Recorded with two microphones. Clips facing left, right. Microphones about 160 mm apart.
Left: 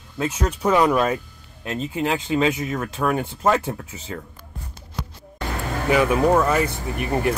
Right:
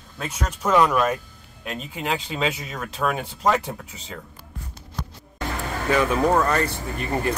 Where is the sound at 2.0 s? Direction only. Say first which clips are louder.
Left 4 dB; 20° left (ahead or behind).